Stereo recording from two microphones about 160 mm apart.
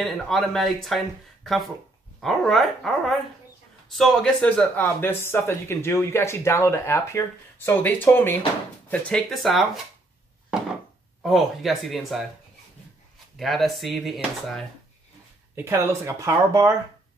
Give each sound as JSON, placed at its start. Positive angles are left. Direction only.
{"t": 0.0, "sound": "speech", "side_deg": 0}
{"t": 11.2, "sound": "speech", "side_deg": 0}
{"t": 13.4, "sound": "speech", "side_deg": 0}
{"t": 15.5, "sound": "speech", "side_deg": -15}